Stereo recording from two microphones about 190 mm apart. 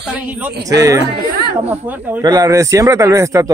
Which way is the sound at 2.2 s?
20° right (ahead or behind).